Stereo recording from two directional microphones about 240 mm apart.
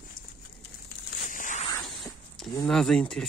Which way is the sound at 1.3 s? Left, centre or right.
Left.